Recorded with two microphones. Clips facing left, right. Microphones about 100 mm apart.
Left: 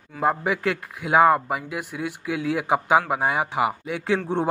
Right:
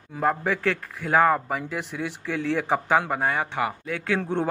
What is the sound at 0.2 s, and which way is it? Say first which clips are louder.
Speech: left 1 dB; 10° left (ahead or behind).